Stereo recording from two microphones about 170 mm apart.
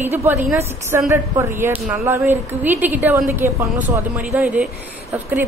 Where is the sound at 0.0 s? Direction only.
15° right (ahead or behind).